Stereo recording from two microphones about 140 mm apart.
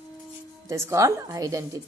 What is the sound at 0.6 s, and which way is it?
Speech, 20° right (ahead or behind).